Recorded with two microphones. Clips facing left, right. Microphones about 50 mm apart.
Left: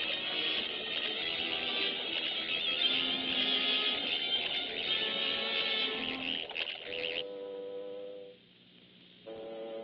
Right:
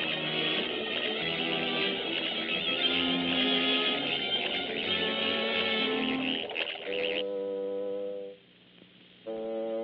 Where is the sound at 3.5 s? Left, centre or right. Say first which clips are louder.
Right 5 dB; right.